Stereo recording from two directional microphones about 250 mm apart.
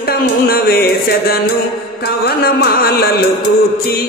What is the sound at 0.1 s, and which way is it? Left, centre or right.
Music, left.